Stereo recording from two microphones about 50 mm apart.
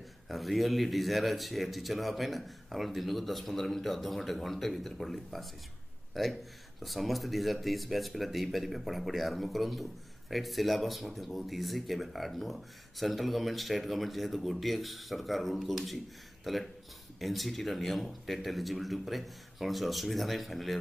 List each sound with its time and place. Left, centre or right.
0.3 s speech: centre